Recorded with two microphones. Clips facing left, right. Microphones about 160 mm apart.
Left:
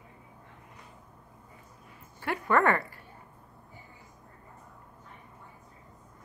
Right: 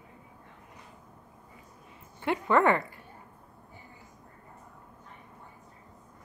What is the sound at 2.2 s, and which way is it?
Speech, 20° right (ahead or behind).